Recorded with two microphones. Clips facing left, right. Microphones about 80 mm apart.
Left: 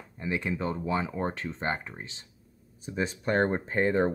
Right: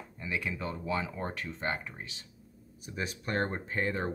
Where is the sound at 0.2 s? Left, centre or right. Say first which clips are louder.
Left 5 dB; left.